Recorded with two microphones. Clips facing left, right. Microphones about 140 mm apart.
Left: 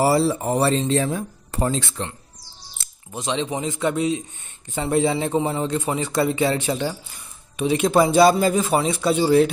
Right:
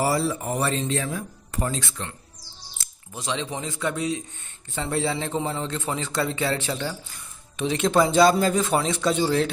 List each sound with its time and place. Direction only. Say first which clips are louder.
0.0 s a man's voice: left 5 dB; 30° left (ahead or behind); by 9.5 s 10° left (ahead or behind)